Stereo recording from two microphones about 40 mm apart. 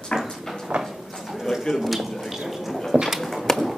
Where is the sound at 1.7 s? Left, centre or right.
Centre.